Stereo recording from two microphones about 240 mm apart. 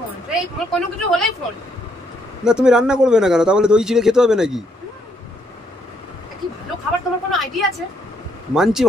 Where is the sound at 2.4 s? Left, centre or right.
Centre.